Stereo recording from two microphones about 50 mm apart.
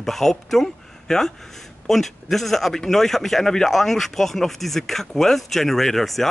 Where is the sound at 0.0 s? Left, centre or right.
Centre.